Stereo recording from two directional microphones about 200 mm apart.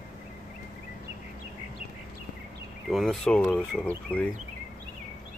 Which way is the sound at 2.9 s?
Centre (ahead or behind).